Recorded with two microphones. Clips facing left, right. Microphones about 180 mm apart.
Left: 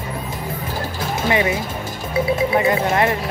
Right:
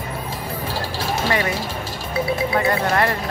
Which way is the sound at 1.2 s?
20° left (ahead or behind).